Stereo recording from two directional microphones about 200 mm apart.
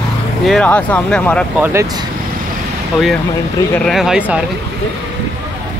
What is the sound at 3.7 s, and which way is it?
Speech, centre (ahead or behind).